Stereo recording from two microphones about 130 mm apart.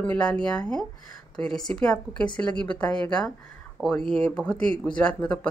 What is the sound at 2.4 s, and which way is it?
Speech, 20° left (ahead or behind).